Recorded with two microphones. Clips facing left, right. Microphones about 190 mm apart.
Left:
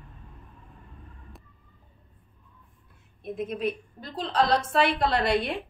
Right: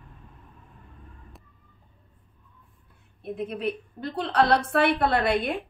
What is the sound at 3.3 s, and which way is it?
A woman's voice, 60° right (ahead or behind).